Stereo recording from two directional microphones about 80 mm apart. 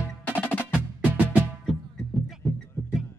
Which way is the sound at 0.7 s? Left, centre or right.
Centre.